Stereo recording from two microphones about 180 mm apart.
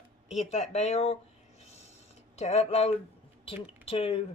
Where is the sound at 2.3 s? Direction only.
40° left (ahead or behind).